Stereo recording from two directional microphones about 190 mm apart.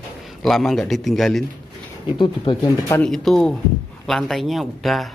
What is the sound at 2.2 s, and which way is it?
Speech, 25° left (ahead or behind).